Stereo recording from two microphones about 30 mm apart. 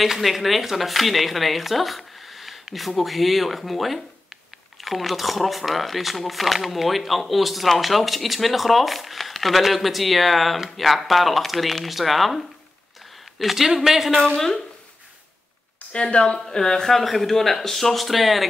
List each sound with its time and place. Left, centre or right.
0.0 s speech: centre
13.2 s a sound: centre
13.7 s speech: centre
15.9 s speech: left
16.3 s a woman's voice: centre
16.8 s speech: centre